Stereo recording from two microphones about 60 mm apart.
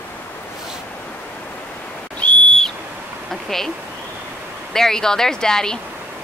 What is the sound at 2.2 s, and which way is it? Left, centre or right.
Whistle, centre.